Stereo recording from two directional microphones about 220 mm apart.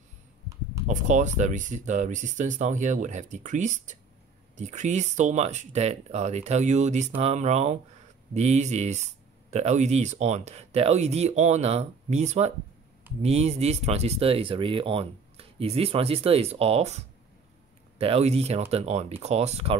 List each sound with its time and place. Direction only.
0.8 s speech: 35° right (ahead or behind)